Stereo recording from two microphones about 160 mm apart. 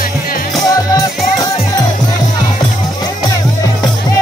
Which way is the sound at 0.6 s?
20° left (ahead or behind).